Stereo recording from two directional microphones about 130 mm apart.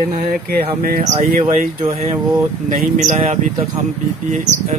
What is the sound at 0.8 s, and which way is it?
Speech, 80° right.